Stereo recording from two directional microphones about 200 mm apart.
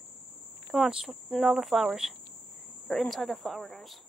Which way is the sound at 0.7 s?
Centre (ahead or behind).